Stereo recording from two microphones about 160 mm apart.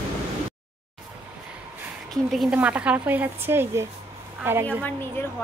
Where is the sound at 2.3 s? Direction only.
5° right (ahead or behind).